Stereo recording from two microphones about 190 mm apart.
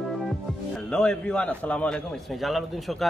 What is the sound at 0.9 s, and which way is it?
A man's voice, 5° left (ahead or behind).